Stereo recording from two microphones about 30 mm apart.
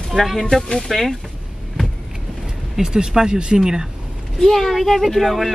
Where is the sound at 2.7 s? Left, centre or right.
Right.